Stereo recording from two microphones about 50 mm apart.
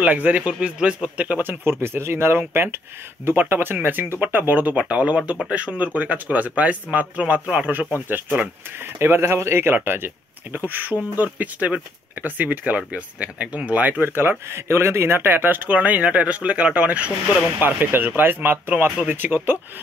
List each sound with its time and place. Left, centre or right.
0.0 s speech: right
1.5 s speech: right
8.9 s speech: right
14.5 s speech: right
17.6 s speech: right